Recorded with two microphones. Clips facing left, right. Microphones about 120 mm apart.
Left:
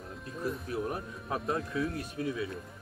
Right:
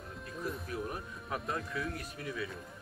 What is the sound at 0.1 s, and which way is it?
Music, centre (ahead or behind).